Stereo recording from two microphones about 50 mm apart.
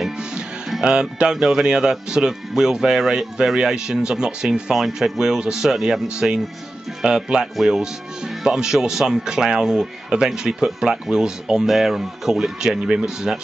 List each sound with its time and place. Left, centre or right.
0.7 s speech: centre
4.7 s speech: centre
6.1 s speech: centre